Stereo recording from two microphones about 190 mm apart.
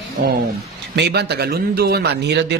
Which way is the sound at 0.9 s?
60° right (ahead or behind).